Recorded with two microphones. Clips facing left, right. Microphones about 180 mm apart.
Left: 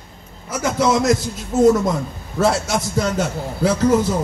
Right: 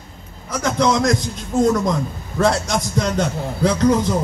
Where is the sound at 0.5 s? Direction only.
5° left (ahead or behind).